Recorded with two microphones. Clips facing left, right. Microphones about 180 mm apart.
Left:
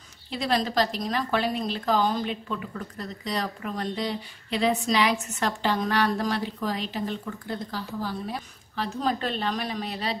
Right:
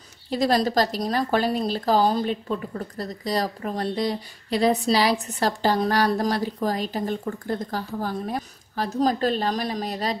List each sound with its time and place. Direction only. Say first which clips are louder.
0.3 s speech: right 5 dB; 40° right (ahead or behind)